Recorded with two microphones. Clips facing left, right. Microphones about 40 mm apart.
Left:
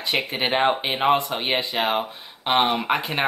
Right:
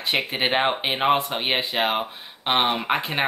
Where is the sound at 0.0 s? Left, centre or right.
Centre.